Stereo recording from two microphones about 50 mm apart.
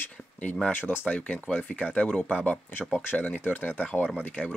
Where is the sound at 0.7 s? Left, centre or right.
Left.